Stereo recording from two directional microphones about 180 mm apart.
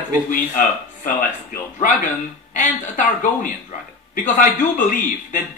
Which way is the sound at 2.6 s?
45° left (ahead or behind).